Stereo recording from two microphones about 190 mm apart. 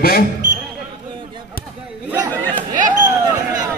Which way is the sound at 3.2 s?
20° right (ahead or behind).